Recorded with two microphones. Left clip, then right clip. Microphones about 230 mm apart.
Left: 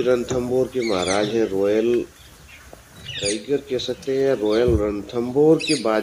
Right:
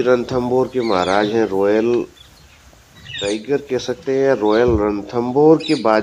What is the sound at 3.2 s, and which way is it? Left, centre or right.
Speech, centre.